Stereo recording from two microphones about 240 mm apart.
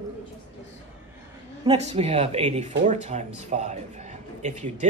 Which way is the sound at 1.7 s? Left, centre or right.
Right.